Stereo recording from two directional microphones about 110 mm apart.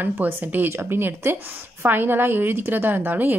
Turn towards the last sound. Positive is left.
turn(degrees=-15)  # may be behind; listen again after turning